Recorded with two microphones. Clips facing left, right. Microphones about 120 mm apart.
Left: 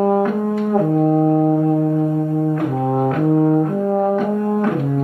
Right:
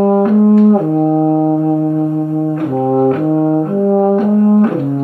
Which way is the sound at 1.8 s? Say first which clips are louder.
Right 3 dB; 25° right (ahead or behind).